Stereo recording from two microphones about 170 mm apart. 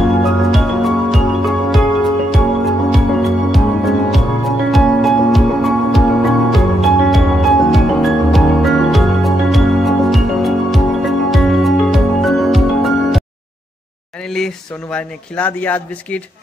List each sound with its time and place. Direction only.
0.2 s music: centre (ahead or behind)
14.3 s speech: 5° left (ahead or behind)